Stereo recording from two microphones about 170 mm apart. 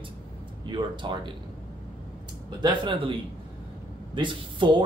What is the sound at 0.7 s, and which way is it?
Speech, 25° right (ahead or behind).